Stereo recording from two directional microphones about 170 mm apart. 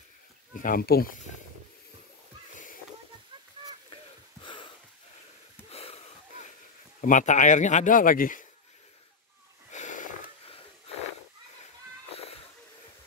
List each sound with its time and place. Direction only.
0.6 s speech: 60° left (ahead or behind)
3.9 s wheeze: 30° left (ahead or behind)
5.7 s wheeze: 40° left (ahead or behind)
7.0 s speech: 50° left (ahead or behind)
9.7 s a sound: 45° left (ahead or behind)
12.1 s a sound: 35° left (ahead or behind)